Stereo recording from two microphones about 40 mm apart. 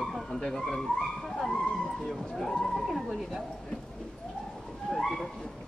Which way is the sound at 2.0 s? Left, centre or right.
Centre.